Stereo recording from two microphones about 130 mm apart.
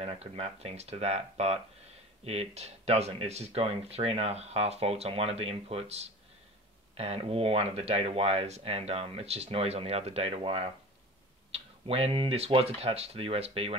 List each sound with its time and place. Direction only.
0.0 s speech: 50° right (ahead or behind)